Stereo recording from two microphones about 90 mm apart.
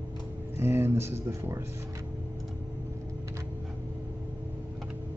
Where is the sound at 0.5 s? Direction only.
30° right (ahead or behind).